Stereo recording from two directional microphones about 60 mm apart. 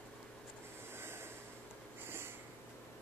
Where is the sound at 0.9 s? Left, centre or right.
Right.